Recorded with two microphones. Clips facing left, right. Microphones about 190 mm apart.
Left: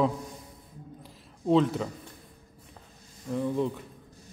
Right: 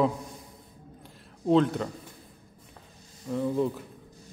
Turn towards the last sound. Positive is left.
turn(degrees=-5)  # may be behind; listen again after turning